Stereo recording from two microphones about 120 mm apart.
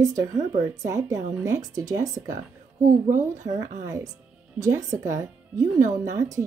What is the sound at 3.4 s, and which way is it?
A woman's voice, 30° right (ahead or behind).